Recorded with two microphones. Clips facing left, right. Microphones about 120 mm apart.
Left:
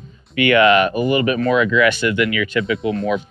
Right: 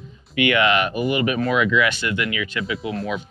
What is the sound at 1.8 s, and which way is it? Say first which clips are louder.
Speech: left 6 dB; 60° left (ahead or behind).